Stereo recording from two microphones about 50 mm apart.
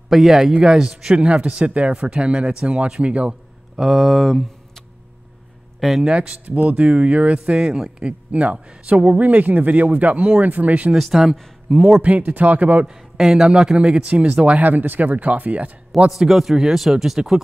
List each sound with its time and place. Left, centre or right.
0.1 s speech: centre
0.5 s a man's voice: centre
3.7 s a man's voice: centre
6.0 s a man's voice: right
8.3 s a man's voice: right
10.9 s speech: centre
12.0 s a man's voice: right
12.8 s a man's voice: centre; by 15.7 s right
16.1 s a man's voice: centre